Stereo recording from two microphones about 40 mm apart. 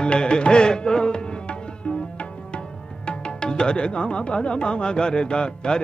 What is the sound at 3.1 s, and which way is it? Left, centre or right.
Speech, left.